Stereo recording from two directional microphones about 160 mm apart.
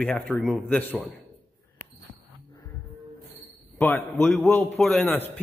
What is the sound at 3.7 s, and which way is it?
Speech, 10° left (ahead or behind).